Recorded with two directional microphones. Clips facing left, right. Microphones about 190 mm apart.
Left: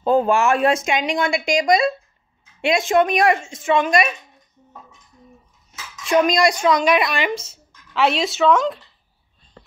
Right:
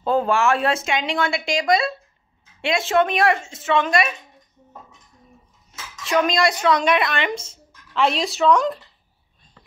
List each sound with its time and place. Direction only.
0.0 s speech: 15° left (ahead or behind)
6.3 s speech: 15° left (ahead or behind)